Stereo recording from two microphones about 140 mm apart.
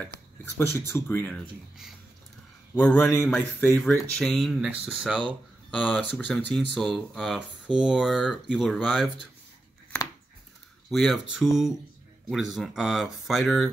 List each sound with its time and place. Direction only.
0.6 s speech: 20° left (ahead or behind)
2.7 s speech: 15° left (ahead or behind)
4.2 s speech: centre (ahead or behind)
10.9 s speech: centre (ahead or behind)